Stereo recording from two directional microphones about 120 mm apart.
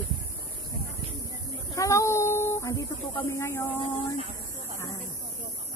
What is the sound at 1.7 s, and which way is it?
Speech, 25° left (ahead or behind).